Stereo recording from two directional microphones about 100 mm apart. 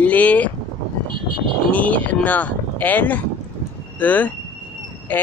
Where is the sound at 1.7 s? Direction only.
15° left (ahead or behind).